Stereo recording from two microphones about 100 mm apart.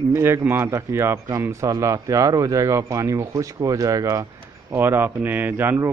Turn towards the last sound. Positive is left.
turn(degrees=-20)  # may be behind; listen again after turning